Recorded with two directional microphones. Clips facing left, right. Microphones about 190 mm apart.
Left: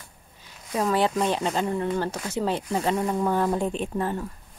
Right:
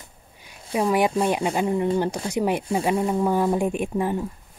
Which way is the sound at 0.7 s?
10° right (ahead or behind).